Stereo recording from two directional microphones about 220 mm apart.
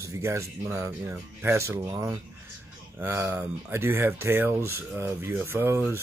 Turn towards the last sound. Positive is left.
turn(degrees=-10)  # may be behind; listen again after turning